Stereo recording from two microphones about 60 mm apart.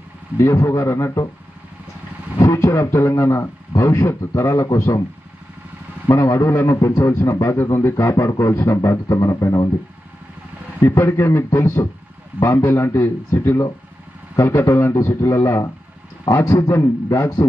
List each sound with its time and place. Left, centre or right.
0.4 s a man's voice: left
2.3 s a man's voice: left
6.0 s a man's voice: left
9.1 s a man's voice: left
10.8 s a man's voice: left
15.0 s a man's voice: left
16.3 s a man's voice: left
16.7 s a man's voice: left